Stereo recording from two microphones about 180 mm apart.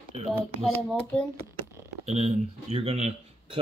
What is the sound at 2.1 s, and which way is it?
Speech, 40° right (ahead or behind).